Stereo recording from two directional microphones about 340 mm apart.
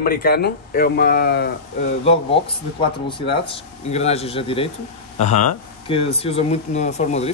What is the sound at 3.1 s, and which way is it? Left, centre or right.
Speech, centre.